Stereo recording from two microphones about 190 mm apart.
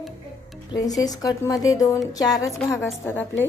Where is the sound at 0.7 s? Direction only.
20° left (ahead or behind).